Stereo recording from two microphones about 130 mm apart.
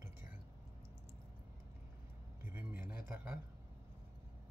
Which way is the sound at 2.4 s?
15° right (ahead or behind).